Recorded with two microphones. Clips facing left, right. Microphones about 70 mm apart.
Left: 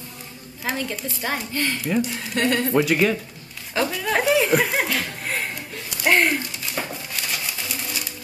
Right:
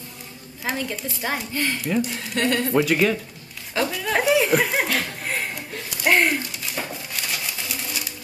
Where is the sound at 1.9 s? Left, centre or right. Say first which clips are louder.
Left 1 dB; centre.